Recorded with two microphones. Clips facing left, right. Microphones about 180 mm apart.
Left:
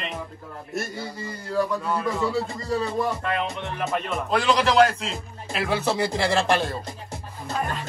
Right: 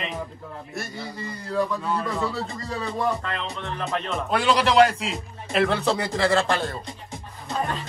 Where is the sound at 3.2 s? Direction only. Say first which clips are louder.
Left 4 dB; 10° left (ahead or behind).